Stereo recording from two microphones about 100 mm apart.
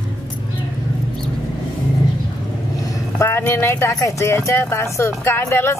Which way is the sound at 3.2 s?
25° left (ahead or behind).